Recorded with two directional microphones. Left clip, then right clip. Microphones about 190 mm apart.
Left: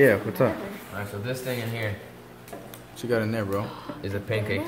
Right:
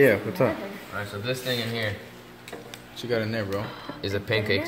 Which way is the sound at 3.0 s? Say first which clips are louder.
Left 1 dB; 10° left (ahead or behind).